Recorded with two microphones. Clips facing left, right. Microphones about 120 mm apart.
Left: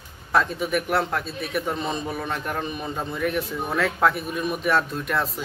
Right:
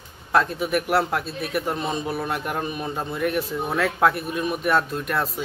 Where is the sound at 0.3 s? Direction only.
Centre (ahead or behind).